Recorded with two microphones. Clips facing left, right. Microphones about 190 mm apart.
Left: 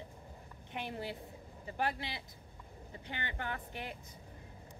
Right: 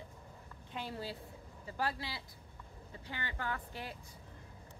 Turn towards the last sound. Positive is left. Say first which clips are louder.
# left 1 dB
turn(degrees=20)  # may be behind; listen again after turning